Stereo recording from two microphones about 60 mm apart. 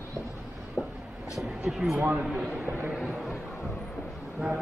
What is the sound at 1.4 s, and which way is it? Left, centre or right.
Speech, centre.